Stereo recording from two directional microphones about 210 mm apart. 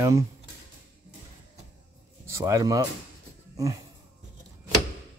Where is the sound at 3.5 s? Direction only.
15° right (ahead or behind).